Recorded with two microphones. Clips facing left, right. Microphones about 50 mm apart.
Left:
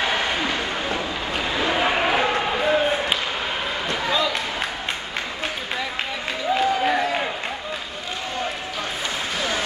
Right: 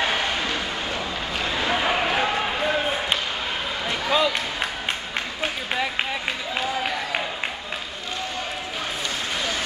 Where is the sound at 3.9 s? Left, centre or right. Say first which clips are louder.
Right 1 dB; centre.